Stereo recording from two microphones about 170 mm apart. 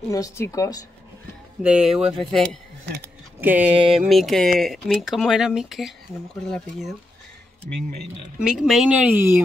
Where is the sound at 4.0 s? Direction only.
Centre (ahead or behind).